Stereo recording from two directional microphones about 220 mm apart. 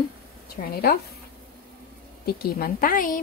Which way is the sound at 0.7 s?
45° left (ahead or behind).